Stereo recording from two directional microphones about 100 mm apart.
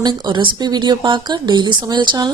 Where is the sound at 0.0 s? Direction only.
50° right (ahead or behind).